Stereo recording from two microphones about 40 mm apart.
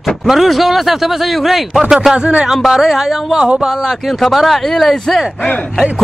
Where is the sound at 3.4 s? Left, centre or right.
Right.